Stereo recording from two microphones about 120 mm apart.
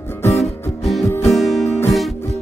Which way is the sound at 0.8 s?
Centre (ahead or behind).